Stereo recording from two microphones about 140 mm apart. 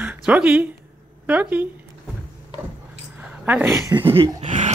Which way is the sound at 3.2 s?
10° right (ahead or behind).